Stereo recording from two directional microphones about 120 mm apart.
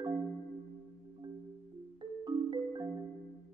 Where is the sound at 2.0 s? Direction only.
35° right (ahead or behind).